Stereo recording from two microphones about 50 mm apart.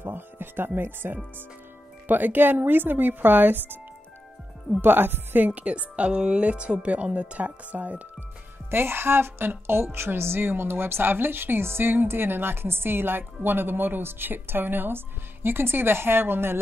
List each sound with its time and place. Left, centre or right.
0.0 s speech: right
4.8 s speech: right
5.5 s speech: right
8.6 s speech: right